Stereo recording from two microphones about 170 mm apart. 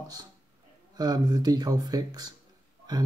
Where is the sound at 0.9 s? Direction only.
25° right (ahead or behind).